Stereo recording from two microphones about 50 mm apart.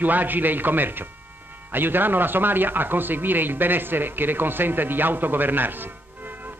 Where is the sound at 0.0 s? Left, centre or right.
Right.